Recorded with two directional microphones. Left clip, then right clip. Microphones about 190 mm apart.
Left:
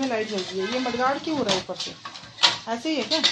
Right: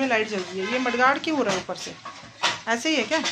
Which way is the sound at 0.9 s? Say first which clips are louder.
Right 5 dB; 20° right (ahead or behind).